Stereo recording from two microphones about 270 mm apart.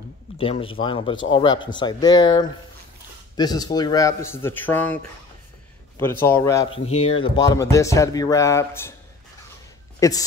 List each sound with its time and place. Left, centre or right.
0.4 s speech: centre
5.9 s speech: centre
6.9 s speech: left
9.9 s speech: centre